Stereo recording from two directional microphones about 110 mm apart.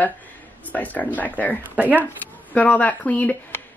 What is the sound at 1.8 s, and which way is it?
Speech, 15° right (ahead or behind).